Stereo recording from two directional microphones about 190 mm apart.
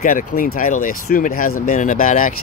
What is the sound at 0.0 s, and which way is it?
Speech, 45° left (ahead or behind).